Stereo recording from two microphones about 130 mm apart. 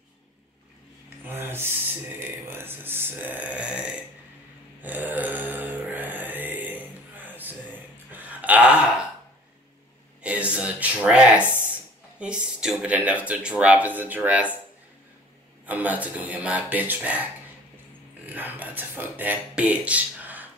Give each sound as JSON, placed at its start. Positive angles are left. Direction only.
{"t": 1.2, "sound": "speech", "side_deg": -15}
{"t": 4.8, "sound": "a sound", "side_deg": -15}
{"t": 10.2, "sound": "a sound", "side_deg": -10}
{"t": 12.2, "sound": "speech", "side_deg": -5}
{"t": 15.6, "sound": "speech", "side_deg": -10}
{"t": 18.2, "sound": "speech", "side_deg": -15}